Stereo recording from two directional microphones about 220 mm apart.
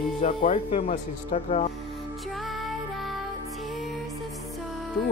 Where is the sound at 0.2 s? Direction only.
35° left (ahead or behind).